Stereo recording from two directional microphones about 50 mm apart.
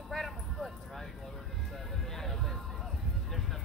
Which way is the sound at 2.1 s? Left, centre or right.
Centre.